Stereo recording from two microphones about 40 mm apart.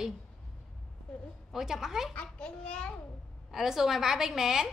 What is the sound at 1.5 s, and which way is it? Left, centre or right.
Speech, centre.